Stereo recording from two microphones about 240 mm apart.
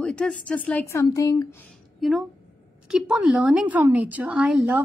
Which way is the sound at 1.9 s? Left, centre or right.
Centre.